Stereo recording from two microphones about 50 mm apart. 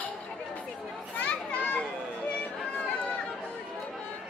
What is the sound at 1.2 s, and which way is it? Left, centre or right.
Children playing, left.